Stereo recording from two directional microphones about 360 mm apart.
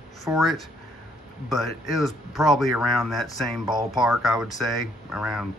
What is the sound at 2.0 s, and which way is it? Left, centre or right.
Speech, centre.